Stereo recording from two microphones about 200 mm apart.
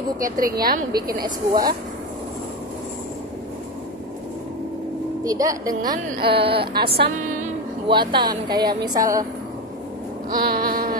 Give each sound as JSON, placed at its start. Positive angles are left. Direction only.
{"t": 0.2, "sound": "speech", "side_deg": -45}
{"t": 0.9, "sound": "a woman's voice", "side_deg": -20}
{"t": 1.5, "sound": "speech", "side_deg": -45}
{"t": 5.2, "sound": "a woman's voice", "side_deg": -15}
{"t": 6.7, "sound": "speech", "side_deg": -50}
{"t": 7.9, "sound": "a woman's voice", "side_deg": -25}
{"t": 10.3, "sound": "a sound", "side_deg": -45}